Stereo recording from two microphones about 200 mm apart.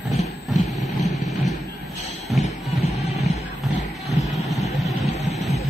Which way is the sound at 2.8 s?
30° left (ahead or behind).